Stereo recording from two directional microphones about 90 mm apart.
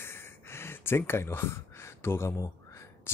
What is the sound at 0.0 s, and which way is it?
Speech, 25° left (ahead or behind).